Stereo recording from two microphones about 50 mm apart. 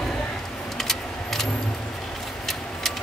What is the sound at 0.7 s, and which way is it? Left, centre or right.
Vehicle, centre.